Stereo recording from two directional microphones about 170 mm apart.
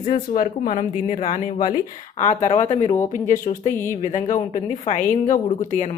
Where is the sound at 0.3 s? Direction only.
45° left (ahead or behind).